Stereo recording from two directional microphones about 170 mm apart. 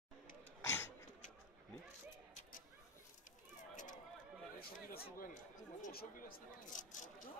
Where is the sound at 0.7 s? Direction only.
15° left (ahead or behind).